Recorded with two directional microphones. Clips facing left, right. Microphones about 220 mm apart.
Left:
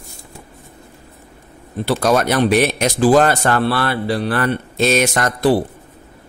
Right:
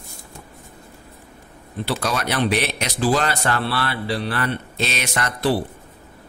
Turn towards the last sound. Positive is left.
turn(degrees=45)  # may be behind; listen again after turning